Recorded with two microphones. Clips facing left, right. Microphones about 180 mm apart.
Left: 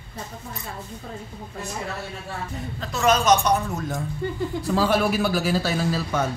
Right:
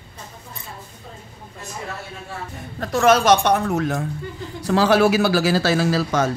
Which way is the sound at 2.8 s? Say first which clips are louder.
Right 5 dB; 65° right (ahead or behind).